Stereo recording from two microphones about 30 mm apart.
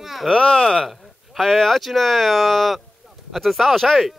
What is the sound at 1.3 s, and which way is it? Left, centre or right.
Speech, centre.